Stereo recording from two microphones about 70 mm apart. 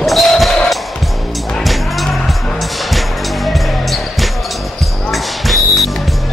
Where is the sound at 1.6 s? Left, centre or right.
Centre.